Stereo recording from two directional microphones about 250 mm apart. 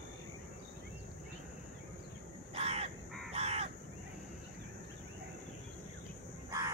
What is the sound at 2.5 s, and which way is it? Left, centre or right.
Crow, right.